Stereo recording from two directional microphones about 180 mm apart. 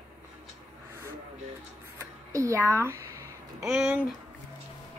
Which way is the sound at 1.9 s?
15° right (ahead or behind).